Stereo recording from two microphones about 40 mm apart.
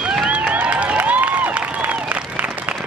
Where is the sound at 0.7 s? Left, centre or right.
Right.